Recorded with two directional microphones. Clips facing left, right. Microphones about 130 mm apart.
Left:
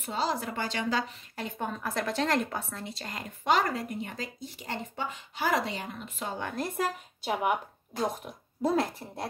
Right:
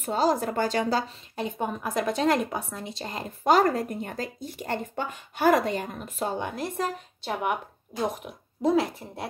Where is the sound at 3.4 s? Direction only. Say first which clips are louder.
Right 6 dB; 40° right (ahead or behind).